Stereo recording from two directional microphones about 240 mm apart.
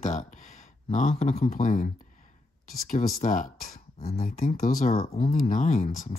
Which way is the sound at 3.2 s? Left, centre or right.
Left.